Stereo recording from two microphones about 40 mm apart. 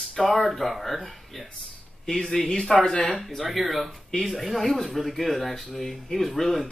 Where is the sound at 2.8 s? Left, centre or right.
Left.